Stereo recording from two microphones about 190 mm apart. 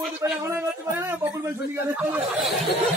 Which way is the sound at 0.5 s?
10° right (ahead or behind).